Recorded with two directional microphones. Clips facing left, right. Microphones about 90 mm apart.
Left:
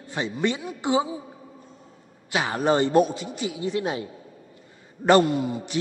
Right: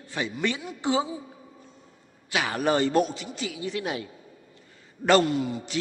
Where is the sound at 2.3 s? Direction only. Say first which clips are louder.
Left 2 dB; 25° left (ahead or behind).